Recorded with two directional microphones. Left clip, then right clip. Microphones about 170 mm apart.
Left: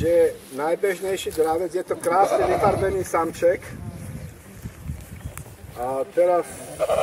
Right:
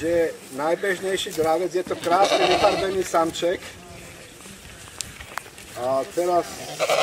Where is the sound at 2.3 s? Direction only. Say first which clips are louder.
Right 1 dB; 65° left (ahead or behind).